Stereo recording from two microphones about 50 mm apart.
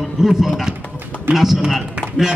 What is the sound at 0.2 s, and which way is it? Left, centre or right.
A man's voice, centre.